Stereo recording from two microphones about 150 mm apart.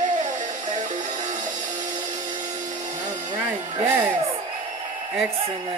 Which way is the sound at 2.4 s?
55° right (ahead or behind).